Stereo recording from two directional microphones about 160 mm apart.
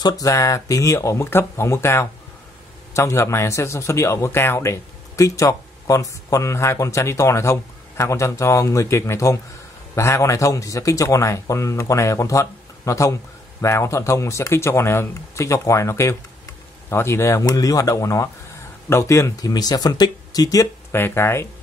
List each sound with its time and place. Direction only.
0.0 s a man's voice: 20° left (ahead or behind)